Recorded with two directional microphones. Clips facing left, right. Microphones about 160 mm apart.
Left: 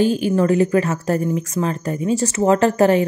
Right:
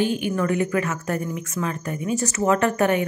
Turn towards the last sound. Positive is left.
turn(degrees=30)  # may be behind; listen again after turning